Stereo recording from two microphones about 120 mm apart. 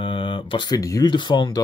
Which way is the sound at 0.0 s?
45° left (ahead or behind).